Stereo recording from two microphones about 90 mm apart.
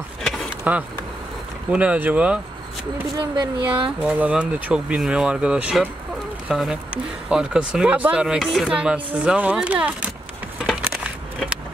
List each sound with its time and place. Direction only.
0.7 s speech: 20° right (ahead or behind)
3.2 s speech: 65° right (ahead or behind)
4.0 s speech: 15° right (ahead or behind)